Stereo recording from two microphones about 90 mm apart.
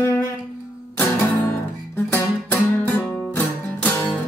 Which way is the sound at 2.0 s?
25° left (ahead or behind).